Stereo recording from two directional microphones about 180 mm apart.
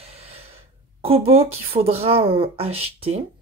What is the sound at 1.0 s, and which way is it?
Speech, 35° right (ahead or behind).